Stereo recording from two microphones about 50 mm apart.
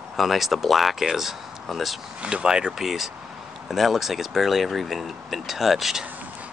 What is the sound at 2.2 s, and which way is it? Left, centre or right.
Speech, centre.